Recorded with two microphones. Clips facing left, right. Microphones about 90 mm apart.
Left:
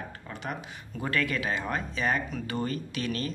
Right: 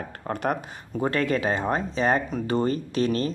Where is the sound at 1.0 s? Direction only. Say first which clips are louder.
Right 6 dB; 35° right (ahead or behind).